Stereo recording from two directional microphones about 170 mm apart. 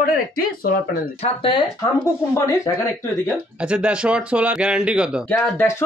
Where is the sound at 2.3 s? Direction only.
20° left (ahead or behind).